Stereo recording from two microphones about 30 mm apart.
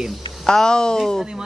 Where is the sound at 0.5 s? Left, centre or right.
Left.